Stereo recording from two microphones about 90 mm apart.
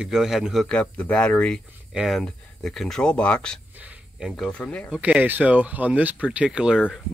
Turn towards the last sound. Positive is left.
turn(degrees=-10)  # may be behind; listen again after turning